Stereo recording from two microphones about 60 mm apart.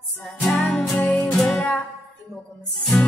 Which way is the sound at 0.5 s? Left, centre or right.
Centre.